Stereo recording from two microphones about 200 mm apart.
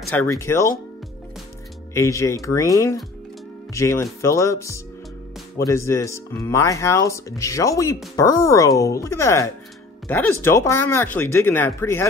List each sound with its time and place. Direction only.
0.1 s speech: 15° left (ahead or behind)
2.0 s speech: 15° left (ahead or behind)